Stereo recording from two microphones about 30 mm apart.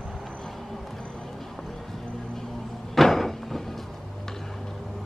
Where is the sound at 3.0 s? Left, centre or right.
Centre.